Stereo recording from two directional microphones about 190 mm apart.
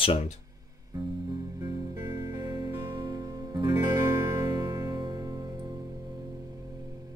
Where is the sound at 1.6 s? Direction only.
20° right (ahead or behind).